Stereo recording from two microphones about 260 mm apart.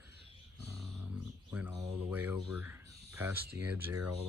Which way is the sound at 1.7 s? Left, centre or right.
Centre.